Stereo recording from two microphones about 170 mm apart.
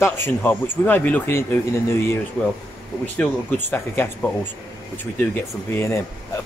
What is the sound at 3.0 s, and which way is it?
Speech, 10° left (ahead or behind).